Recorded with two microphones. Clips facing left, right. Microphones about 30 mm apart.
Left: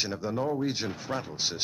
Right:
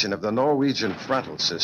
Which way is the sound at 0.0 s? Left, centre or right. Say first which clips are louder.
Right 8 dB; right.